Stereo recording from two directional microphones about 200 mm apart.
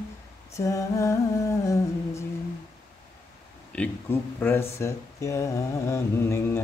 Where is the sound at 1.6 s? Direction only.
15° left (ahead or behind).